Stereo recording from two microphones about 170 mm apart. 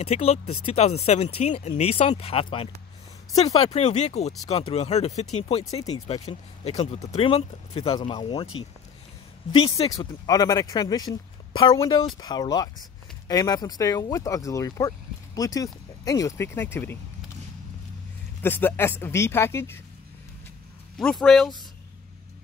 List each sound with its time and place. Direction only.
0.0 s speech: 35° left (ahead or behind)
9.8 s speech: 20° left (ahead or behind)
18.4 s speech: 10° left (ahead or behind)
21.0 s speech: 5° left (ahead or behind)